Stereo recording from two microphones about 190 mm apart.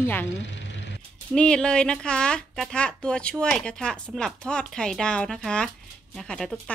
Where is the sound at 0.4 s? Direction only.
70° left (ahead or behind).